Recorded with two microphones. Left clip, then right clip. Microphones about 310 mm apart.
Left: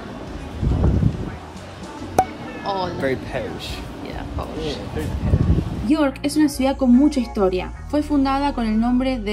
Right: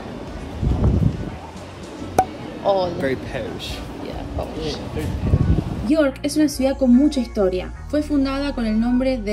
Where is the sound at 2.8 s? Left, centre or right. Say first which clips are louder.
Right 1 dB; centre.